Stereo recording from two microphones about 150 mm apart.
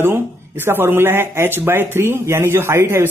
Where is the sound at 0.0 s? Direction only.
15° right (ahead or behind).